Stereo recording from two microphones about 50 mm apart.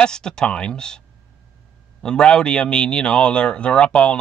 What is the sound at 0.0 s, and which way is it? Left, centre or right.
Speech, centre.